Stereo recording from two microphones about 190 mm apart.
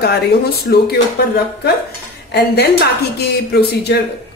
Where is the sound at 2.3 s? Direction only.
60° left (ahead or behind).